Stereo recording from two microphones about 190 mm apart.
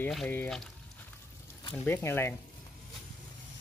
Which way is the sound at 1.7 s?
10° left (ahead or behind).